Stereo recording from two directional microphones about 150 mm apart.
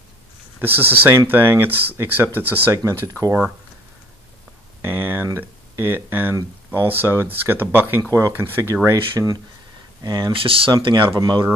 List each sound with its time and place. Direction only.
0.6 s speech: 15° right (ahead or behind)
4.8 s a sound: 15° right (ahead or behind)
7.9 s speech: 20° right (ahead or behind)